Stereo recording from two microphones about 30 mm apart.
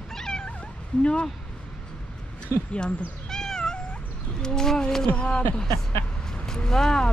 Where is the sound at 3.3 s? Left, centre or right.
Centre.